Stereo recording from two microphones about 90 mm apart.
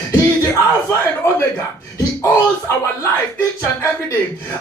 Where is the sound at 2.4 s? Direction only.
20° left (ahead or behind).